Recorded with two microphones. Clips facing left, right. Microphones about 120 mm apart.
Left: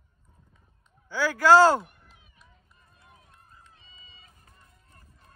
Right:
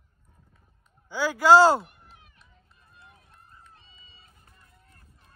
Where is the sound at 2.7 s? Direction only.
65° right (ahead or behind).